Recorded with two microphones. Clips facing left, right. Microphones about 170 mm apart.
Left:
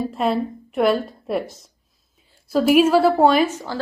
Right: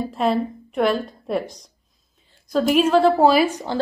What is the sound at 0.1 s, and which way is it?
A woman's voice, centre (ahead or behind).